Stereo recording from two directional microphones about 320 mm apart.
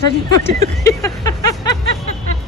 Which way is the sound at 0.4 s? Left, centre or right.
Centre.